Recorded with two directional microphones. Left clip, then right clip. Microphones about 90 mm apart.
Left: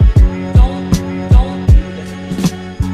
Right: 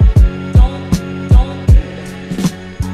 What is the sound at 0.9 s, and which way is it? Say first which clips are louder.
Music: left 1 dB; centre (ahead or behind).